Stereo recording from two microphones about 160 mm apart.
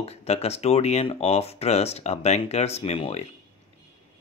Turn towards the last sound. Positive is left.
turn(degrees=40)  # may be behind; listen again after turning